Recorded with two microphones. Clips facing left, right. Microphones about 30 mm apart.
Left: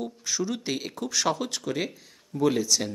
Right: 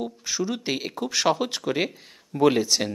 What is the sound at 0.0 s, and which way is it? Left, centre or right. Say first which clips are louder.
Speech: right 2 dB; centre.